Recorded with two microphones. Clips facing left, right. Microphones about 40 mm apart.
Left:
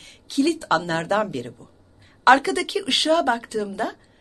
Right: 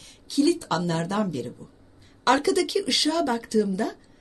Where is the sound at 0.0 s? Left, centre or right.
Left.